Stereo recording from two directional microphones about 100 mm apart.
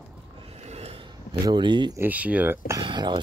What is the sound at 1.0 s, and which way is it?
Speech, 50° right (ahead or behind).